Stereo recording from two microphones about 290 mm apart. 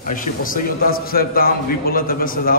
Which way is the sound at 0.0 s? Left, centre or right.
Left.